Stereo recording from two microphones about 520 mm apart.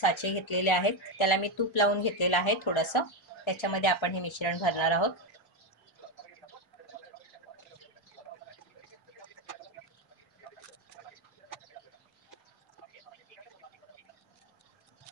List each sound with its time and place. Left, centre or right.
0.0 s speech: left